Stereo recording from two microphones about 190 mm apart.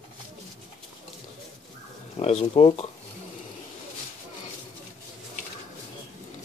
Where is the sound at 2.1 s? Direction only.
35° left (ahead or behind).